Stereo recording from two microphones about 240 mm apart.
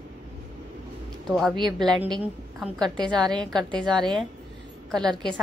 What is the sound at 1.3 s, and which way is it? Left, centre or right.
Speech, centre.